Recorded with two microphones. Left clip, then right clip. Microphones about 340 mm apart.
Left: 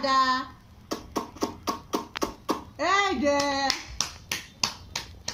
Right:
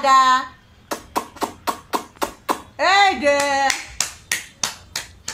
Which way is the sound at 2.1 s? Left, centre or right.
Left.